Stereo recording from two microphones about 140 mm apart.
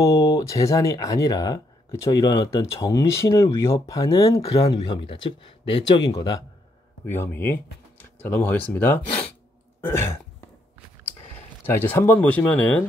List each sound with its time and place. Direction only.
0.0 s speech: 25° left (ahead or behind)
7.1 s speech: 15° left (ahead or behind)
11.6 s speech: 15° left (ahead or behind)